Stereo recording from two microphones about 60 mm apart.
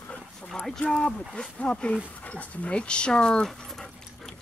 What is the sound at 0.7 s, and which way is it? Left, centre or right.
Speech, centre.